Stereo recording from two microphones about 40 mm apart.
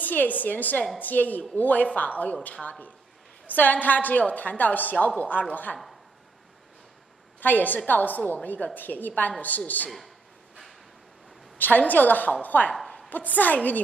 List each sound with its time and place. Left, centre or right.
0.0 s a woman's voice: left
7.3 s a woman's voice: left
9.8 s a sound: centre
11.5 s a woman's voice: left